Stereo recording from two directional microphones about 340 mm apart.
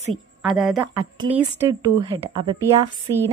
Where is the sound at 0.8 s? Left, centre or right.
Centre.